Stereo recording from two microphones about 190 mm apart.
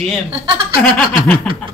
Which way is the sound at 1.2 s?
5° left (ahead or behind).